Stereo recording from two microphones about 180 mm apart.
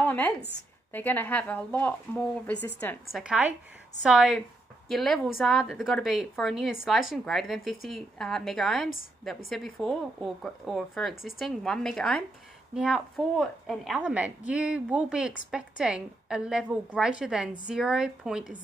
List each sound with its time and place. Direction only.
0.0 s a sound: 10° left (ahead or behind)
0.9 s speech: 10° left (ahead or behind)
3.1 s a woman's voice: 5° right (ahead or behind)